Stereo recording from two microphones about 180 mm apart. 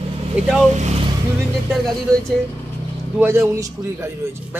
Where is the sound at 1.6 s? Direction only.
Centre (ahead or behind).